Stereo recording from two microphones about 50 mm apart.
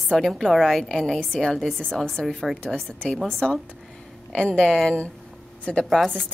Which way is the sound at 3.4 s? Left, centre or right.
Centre.